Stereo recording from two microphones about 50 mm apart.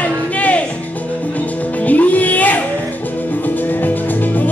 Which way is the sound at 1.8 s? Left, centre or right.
Left.